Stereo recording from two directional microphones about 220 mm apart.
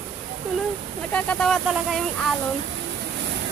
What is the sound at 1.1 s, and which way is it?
Speech, 5° left (ahead or behind).